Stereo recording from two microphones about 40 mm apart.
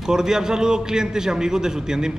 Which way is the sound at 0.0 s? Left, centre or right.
Centre.